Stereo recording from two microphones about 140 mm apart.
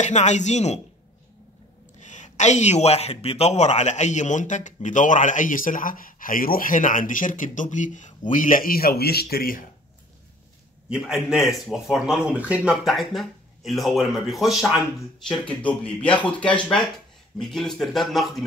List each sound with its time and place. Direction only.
0.0 s speech: 55° left (ahead or behind)
2.0 s speech: 60° left (ahead or behind); by 9.7 s 90° left
10.9 s a man's voice: 5° right (ahead or behind)
15.4 s a man's voice: 10° left (ahead or behind)